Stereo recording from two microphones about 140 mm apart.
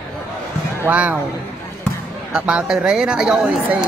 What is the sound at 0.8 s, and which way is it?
Speech, 10° right (ahead or behind).